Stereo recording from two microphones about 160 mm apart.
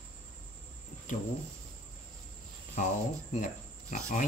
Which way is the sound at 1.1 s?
55° left (ahead or behind).